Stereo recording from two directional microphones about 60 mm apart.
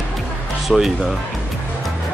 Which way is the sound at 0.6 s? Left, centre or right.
Centre.